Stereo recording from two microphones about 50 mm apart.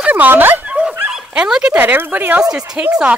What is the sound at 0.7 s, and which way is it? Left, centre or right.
Dog, right.